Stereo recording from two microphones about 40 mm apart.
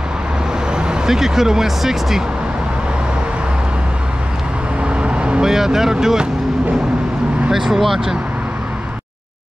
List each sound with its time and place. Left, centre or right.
0.7 s speech: centre
4.8 s vehicle: right
5.4 s speech: centre
7.5 s speech: centre